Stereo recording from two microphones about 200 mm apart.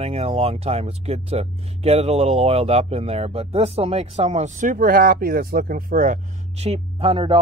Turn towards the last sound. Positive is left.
turn(degrees=-25)  # may be behind; listen again after turning